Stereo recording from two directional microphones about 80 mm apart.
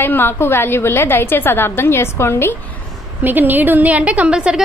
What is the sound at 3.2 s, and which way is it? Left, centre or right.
A woman's voice, right.